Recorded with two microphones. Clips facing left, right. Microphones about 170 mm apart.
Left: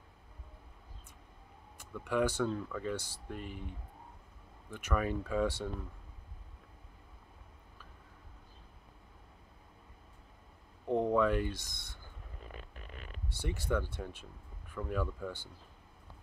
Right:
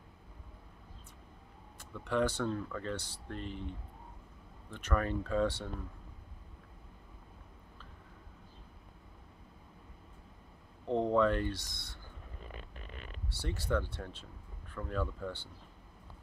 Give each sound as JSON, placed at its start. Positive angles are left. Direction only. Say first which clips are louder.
{"t": 1.8, "sound": "speech", "louder": "even", "side_deg": 10}
{"t": 4.6, "sound": "speech", "louder": "even", "side_deg": 10}
{"t": 10.9, "sound": "a sound", "louder": "even", "side_deg": 10}
{"t": 13.4, "sound": "speech", "louder": "even", "side_deg": 10}